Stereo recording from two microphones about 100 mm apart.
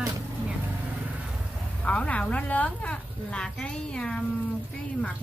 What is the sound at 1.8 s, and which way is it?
Speech, 10° left (ahead or behind).